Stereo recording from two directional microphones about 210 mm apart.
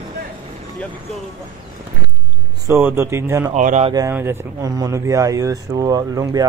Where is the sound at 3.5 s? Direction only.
35° right (ahead or behind).